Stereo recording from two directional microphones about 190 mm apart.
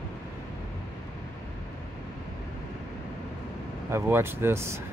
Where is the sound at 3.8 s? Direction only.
15° right (ahead or behind).